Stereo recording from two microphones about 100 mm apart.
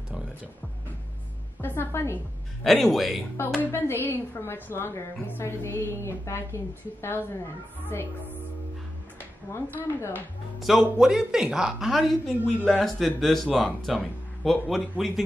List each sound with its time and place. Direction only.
1.6 s a woman's voice: 20° left (ahead or behind)
2.6 s speech: centre (ahead or behind)
3.7 s a woman's voice: 20° left (ahead or behind)
9.2 s speech: 20° left (ahead or behind)
10.6 s speech: 5° right (ahead or behind)